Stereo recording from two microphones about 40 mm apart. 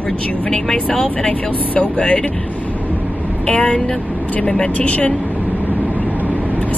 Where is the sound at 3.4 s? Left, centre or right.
Left.